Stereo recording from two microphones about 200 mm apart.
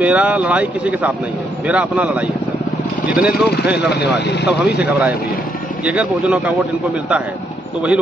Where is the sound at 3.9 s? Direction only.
60° left (ahead or behind).